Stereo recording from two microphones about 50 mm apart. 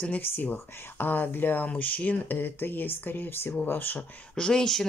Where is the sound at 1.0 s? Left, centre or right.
Left.